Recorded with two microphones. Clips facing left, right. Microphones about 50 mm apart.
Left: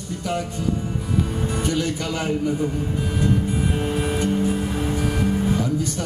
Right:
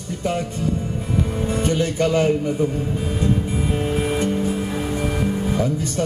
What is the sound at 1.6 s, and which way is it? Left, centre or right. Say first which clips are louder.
Music: right 6 dB; right.